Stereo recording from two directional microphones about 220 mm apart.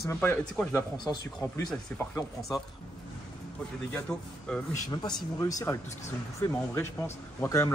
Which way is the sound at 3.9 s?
5° left (ahead or behind).